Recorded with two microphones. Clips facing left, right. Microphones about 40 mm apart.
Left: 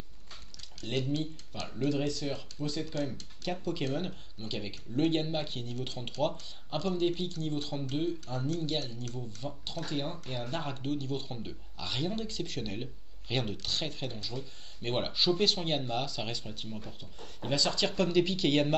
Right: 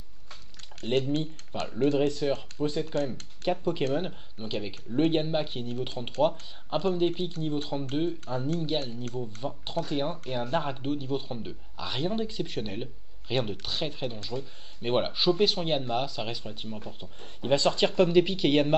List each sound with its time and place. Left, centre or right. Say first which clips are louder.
0.8 s speech: right 6 dB; right
3.6 s a man's voice: right 5 dB; right
17.0 s speech: right 4 dB; right